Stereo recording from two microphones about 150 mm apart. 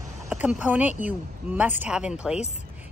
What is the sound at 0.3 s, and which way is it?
Speech, 5° right (ahead or behind).